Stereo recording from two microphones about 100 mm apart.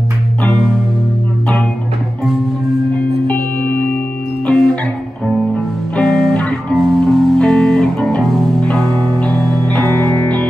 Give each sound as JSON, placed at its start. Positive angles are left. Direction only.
{"t": 0.4, "sound": "music", "side_deg": 5}
{"t": 3.3, "sound": "music", "side_deg": 15}
{"t": 5.9, "sound": "music", "side_deg": 5}